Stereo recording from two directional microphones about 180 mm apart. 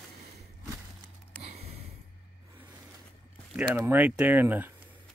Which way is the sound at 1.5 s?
35° right (ahead or behind).